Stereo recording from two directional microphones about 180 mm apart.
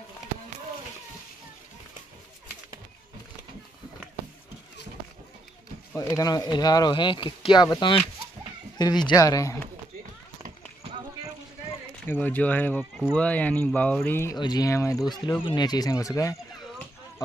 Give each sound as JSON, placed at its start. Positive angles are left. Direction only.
{"t": 5.9, "sound": "speech", "side_deg": 20}
{"t": 12.1, "sound": "speech", "side_deg": 10}